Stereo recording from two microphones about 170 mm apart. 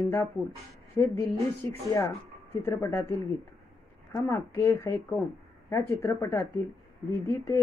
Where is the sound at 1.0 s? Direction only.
20° left (ahead or behind).